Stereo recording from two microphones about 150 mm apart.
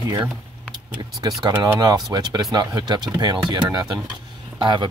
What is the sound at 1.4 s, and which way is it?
Speech, 30° right (ahead or behind).